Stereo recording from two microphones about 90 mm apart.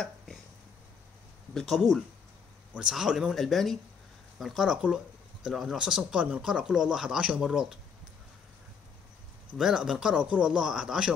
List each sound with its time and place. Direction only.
1.5 s speech: 5° left (ahead or behind)
2.7 s speech: 5° right (ahead or behind)
9.6 s speech: 5° right (ahead or behind)